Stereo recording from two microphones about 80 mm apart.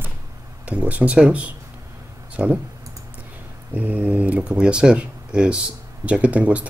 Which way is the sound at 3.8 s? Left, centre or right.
Centre.